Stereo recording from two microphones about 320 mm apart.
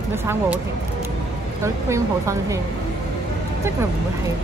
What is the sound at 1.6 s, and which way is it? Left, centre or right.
Speech, centre.